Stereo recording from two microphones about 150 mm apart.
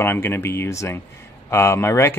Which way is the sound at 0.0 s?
15° left (ahead or behind).